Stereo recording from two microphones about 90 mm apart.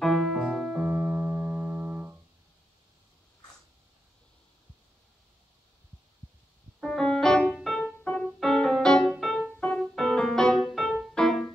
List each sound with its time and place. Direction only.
0.0 s piano: centre (ahead or behind)
1.1 s music: 20° right (ahead or behind)
6.8 s music: 10° left (ahead or behind)
8.0 s keyboard: 15° left (ahead or behind)
8.3 s music: centre (ahead or behind)
9.6 s keyboard: 15° left (ahead or behind)
9.9 s piano: 5° left (ahead or behind)
10.6 s music: centre (ahead or behind)